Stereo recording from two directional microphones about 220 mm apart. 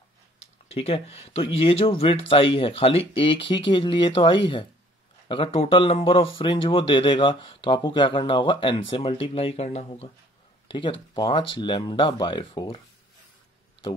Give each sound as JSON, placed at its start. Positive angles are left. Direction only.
{"t": 0.7, "sound": "speech", "side_deg": 25}